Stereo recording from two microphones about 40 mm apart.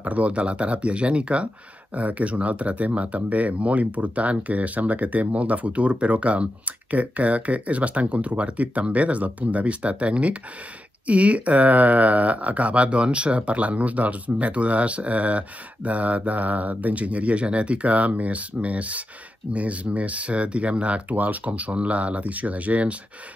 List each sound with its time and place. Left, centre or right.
0.0 s speech: right